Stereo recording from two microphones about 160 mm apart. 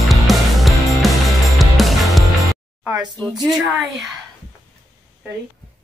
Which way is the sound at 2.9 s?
25° right (ahead or behind).